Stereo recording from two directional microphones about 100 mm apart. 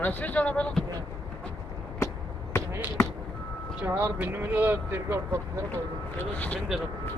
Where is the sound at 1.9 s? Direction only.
25° left (ahead or behind).